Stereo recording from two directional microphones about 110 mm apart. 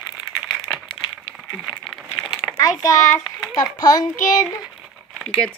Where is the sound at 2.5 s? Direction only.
30° left (ahead or behind).